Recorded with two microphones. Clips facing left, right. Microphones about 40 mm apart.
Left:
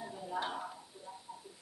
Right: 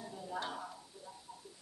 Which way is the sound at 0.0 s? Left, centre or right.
Centre.